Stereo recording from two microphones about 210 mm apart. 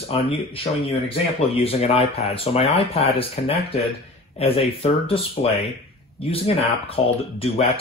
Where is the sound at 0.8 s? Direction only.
25° left (ahead or behind).